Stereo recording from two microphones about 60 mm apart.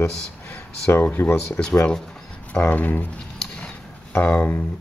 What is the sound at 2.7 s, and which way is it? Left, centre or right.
Speech, left.